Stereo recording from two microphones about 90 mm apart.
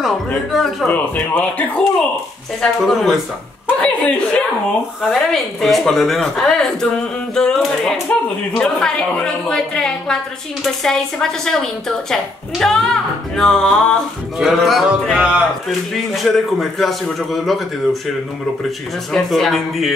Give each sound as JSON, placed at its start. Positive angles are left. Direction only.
{"t": 0.5, "sound": "a woman's voice", "side_deg": 0}
{"t": 0.8, "sound": "a woman's voice", "side_deg": 15}
{"t": 2.6, "sound": "a woman's voice", "side_deg": 0}
{"t": 3.8, "sound": "a woman's voice", "side_deg": 15}
{"t": 5.0, "sound": "a woman's voice", "side_deg": 0}
{"t": 15.1, "sound": "a man's voice", "side_deg": -10}
{"t": 16.2, "sound": "a woman's voice", "side_deg": 0}
{"t": 19.1, "sound": "a woman's voice", "side_deg": 0}